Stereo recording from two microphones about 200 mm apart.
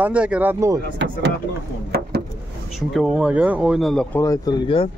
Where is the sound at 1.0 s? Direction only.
60° right (ahead or behind).